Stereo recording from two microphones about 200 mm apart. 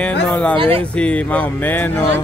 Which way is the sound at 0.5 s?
30° right (ahead or behind).